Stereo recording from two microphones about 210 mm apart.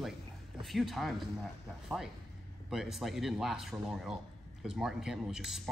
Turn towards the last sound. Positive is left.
turn(degrees=0)  # may be behind; listen again after turning